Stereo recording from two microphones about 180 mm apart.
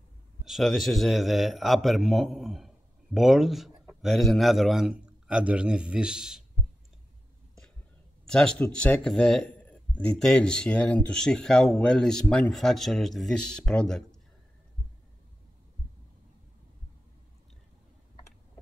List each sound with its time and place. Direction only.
0.5 s a man's voice: centre (ahead or behind)
8.3 s a man's voice: 5° left (ahead or behind)